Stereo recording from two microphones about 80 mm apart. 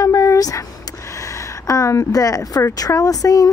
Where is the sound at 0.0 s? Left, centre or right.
Left.